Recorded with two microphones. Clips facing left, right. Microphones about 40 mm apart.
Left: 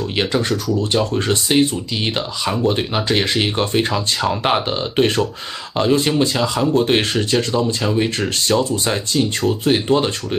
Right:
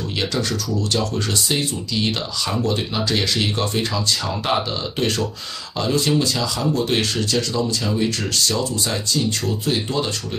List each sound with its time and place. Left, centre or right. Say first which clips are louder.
0.2 s speech: left 4 dB; left